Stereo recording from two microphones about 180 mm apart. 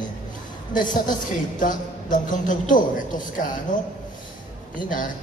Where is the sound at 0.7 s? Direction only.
45° left (ahead or behind).